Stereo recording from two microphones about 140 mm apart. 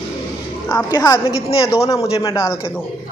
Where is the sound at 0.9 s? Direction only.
30° left (ahead or behind).